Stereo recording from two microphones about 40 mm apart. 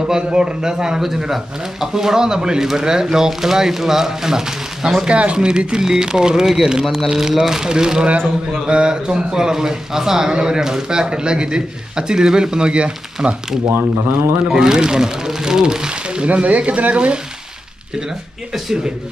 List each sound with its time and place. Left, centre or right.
0.0 s speech: centre
5.0 s speech: right
13.7 s speech: right
14.5 s speech: centre
16.3 s speech: right